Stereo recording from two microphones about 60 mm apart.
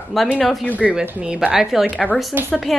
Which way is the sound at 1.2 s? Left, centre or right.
Centre.